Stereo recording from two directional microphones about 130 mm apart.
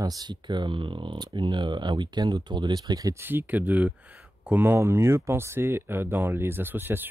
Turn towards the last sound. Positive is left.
turn(degrees=-15)  # may be behind; listen again after turning